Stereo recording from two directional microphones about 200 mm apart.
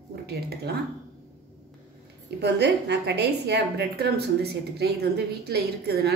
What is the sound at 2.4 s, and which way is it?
A woman's voice, 55° right (ahead or behind).